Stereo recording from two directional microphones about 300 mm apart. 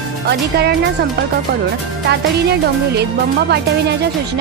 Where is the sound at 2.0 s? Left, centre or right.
Right.